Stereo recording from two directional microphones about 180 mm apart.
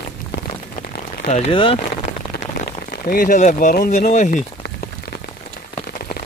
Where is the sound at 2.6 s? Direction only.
55° left (ahead or behind).